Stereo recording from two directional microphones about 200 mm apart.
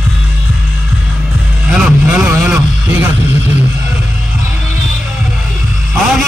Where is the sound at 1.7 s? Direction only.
5° right (ahead or behind).